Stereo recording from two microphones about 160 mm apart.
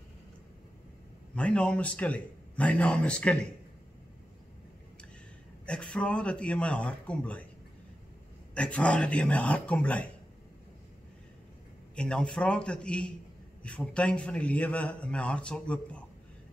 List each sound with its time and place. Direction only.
1.3 s a man's voice: 5° left (ahead or behind)
5.7 s a man's voice: 5° left (ahead or behind)
8.5 s a man's voice: 5° left (ahead or behind)
11.9 s a man's voice: 5° left (ahead or behind)